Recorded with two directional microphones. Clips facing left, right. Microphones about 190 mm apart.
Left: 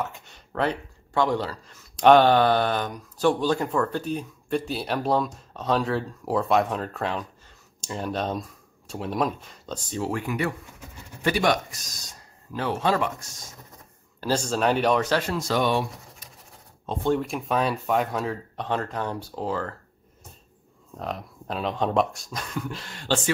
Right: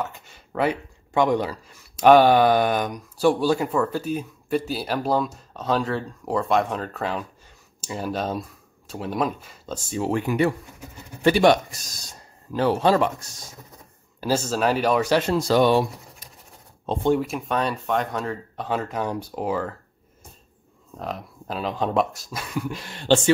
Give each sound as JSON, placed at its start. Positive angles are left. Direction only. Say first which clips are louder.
{"t": 0.0, "sound": "speech", "louder": "right 1 dB", "side_deg": 0}
{"t": 14.2, "sound": "speech", "louder": "right 1 dB", "side_deg": -5}
{"t": 15.1, "sound": "speech", "louder": "right 6 dB", "side_deg": -30}
{"t": 17.2, "sound": "speech", "louder": "even", "side_deg": 0}
{"t": 20.9, "sound": "speech", "louder": "right 1 dB", "side_deg": 0}